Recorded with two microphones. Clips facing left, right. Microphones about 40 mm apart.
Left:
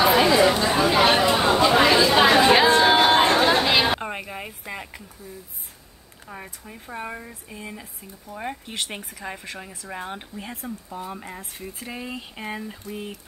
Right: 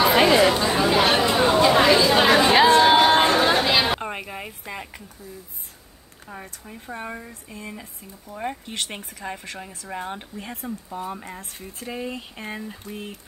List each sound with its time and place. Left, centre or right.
0.1 s chatter: right
0.5 s chatter: centre
3.7 s a sound: centre
6.2 s speech: centre